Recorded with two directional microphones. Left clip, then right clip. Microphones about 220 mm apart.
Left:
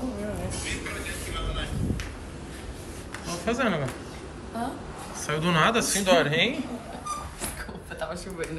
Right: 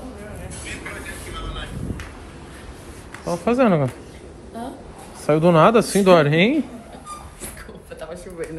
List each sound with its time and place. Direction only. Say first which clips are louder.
1.3 s vehicle: right 1 dB; 20° right (ahead or behind)
3.3 s speech: right 9 dB; 20° right (ahead or behind)
5.2 s speech: right 9 dB; 15° right (ahead or behind)
8.0 s a sound: right 1 dB; centre (ahead or behind)